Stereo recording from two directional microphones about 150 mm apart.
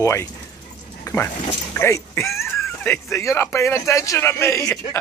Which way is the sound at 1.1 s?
25° left (ahead or behind).